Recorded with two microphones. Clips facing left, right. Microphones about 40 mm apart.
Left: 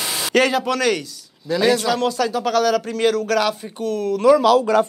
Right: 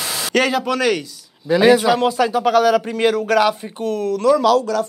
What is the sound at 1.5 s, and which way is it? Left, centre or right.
Speech, centre.